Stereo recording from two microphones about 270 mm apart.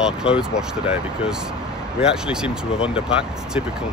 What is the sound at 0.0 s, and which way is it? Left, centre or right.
Speech, centre.